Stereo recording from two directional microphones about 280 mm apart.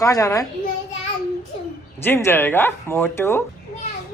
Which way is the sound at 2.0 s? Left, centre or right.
Centre.